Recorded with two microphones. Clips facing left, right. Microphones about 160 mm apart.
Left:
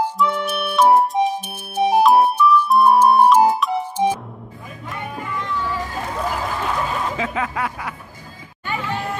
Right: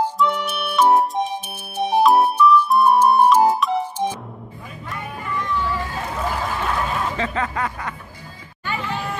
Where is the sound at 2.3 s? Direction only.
10° left (ahead or behind).